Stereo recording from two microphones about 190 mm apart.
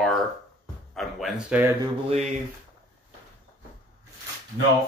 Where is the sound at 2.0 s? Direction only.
35° right (ahead or behind).